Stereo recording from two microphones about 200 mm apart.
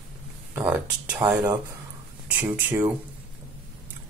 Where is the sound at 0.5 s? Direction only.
5° right (ahead or behind).